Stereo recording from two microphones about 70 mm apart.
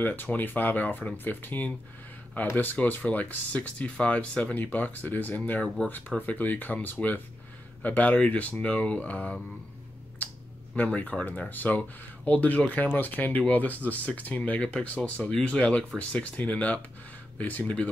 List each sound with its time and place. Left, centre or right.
0.0 s speech: left
10.8 s speech: left